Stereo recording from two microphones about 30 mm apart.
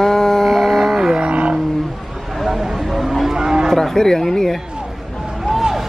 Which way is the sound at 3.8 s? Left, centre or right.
Centre.